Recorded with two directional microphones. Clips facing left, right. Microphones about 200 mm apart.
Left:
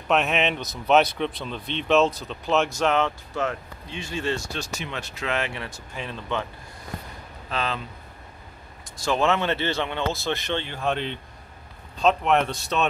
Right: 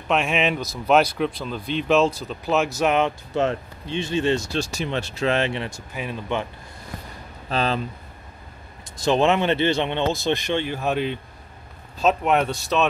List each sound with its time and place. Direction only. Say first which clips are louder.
0.1 s speech: right 1 dB; centre (ahead or behind)
3.3 s speech: right 6 dB; 25° right (ahead or behind)
4.5 s speech: right 7 dB; 30° right (ahead or behind)
5.7 s speech: right 4 dB; 10° right (ahead or behind)
7.4 s speech: right 5 dB; 35° right (ahead or behind)
9.0 s speech: right 4 dB; 20° right (ahead or behind); by 12.8 s centre (ahead or behind)